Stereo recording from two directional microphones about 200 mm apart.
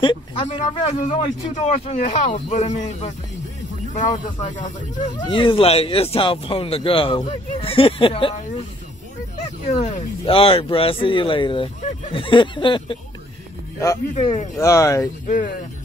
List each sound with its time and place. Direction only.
0.0 s speech: 25° left (ahead or behind)
0.5 s a man's voice: 35° left (ahead or behind)
4.4 s a man's voice: 40° left (ahead or behind)
5.1 s speech: 25° left (ahead or behind)
9.8 s speech: 30° left (ahead or behind)
14.1 s a man's voice: 35° left (ahead or behind)
14.6 s speech: 15° left (ahead or behind)
15.2 s speech: 45° left (ahead or behind)